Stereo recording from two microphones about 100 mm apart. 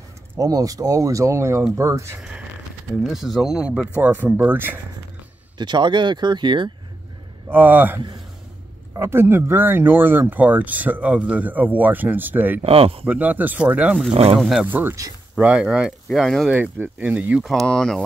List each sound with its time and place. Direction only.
0.4 s speech: 35° right (ahead or behind)
3.0 s speech: 5° right (ahead or behind); by 4.7 s 20° right (ahead or behind)
5.6 s speech: 50° right (ahead or behind)
7.4 s speech: 20° right (ahead or behind)
12.6 s speech: 70° right (ahead or behind)
13.0 s speech: 15° right (ahead or behind); by 16.4 s 5° left (ahead or behind)
16.4 s speech: 15° right (ahead or behind)
17.4 s speech: centre (ahead or behind)